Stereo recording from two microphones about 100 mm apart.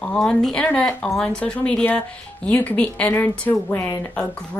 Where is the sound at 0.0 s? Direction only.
10° left (ahead or behind).